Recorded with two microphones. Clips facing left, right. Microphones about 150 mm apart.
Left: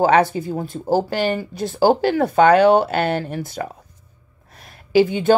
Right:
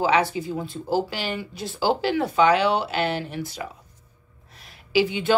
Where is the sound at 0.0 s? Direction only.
50° left (ahead or behind).